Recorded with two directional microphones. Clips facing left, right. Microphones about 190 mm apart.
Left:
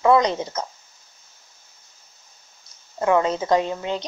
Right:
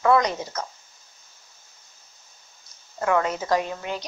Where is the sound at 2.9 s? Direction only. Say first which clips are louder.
Left 4 dB; 25° left (ahead or behind).